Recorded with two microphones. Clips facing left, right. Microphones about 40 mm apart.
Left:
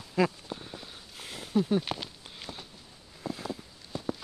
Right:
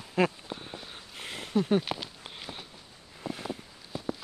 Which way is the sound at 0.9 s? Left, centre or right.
Right.